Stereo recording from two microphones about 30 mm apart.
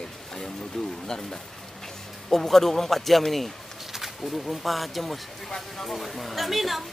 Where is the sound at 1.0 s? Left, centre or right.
Centre.